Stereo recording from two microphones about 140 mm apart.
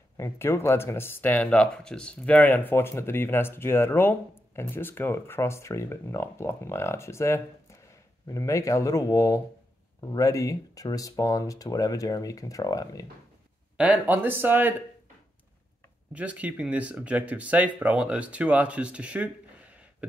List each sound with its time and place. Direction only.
0.2 s speech: 20° left (ahead or behind)
13.7 s speech: 10° right (ahead or behind)
16.1 s speech: 10° right (ahead or behind)